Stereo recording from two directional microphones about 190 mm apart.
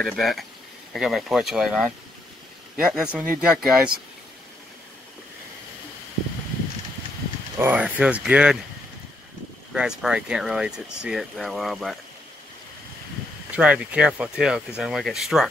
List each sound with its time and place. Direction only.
0.0 s speech: centre (ahead or behind)
7.5 s speech: 10° right (ahead or behind)
9.7 s speech: 5° right (ahead or behind)
13.5 s speech: 5° right (ahead or behind)